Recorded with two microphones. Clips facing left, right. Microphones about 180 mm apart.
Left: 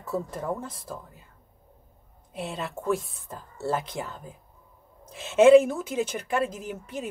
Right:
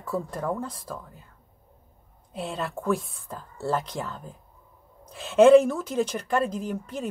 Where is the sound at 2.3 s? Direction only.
Centre (ahead or behind).